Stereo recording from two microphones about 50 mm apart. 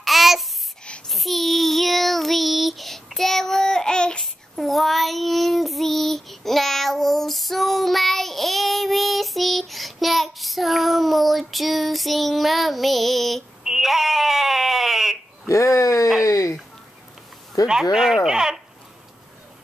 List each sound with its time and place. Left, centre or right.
0.0 s babbling: centre
1.0 s child singing: centre
4.2 s child singing: centre
13.7 s bleat: centre
15.4 s a sound: left
17.6 s speech: centre